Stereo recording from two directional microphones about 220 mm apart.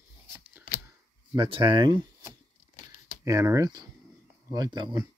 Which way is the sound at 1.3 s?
20° right (ahead or behind).